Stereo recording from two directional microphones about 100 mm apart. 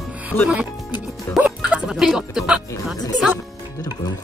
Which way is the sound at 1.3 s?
10° right (ahead or behind).